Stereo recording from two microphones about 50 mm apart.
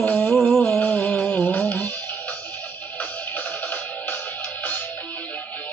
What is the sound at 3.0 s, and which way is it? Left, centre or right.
Music, left.